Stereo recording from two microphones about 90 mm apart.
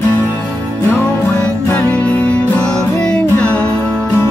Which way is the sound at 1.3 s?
15° left (ahead or behind).